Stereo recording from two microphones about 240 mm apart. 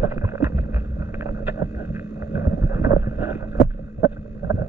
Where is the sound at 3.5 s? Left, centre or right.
Left.